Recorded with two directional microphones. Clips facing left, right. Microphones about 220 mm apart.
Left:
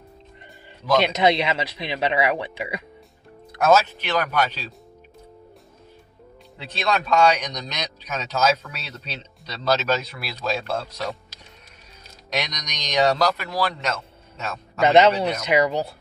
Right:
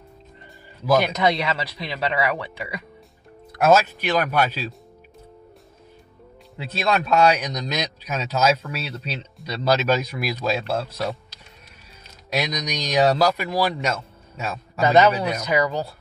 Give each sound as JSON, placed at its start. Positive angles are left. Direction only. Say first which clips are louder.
{"t": 1.0, "sound": "speech", "louder": "left 2 dB", "side_deg": 25}
{"t": 3.5, "sound": "speech", "louder": "right 1 dB", "side_deg": -10}
{"t": 6.6, "sound": "speech", "louder": "right 2 dB", "side_deg": -5}
{"t": 12.3, "sound": "speech", "louder": "right 4 dB", "side_deg": -5}
{"t": 14.8, "sound": "speech", "louder": "left 1 dB", "side_deg": 20}